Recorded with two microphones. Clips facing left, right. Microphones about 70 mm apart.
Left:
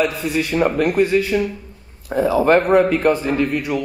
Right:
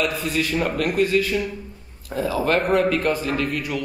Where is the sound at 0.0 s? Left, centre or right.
Left.